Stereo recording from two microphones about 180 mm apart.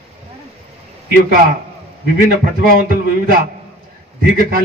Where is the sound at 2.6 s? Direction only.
55° right (ahead or behind).